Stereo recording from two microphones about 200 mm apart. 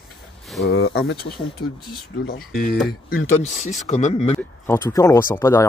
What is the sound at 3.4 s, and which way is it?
Speech, 35° left (ahead or behind).